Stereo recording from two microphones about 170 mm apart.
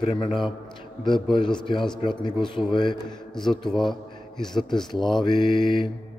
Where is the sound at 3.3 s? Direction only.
Centre (ahead or behind).